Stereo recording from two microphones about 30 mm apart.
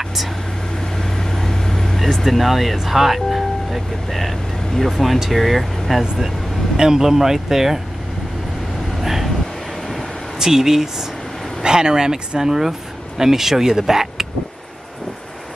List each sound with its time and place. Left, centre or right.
0.9 s vehicle: centre
2.2 s speech: centre
6.8 s speech: centre
9.0 s vehicle: centre
10.4 s speech: centre
11.6 s speech: right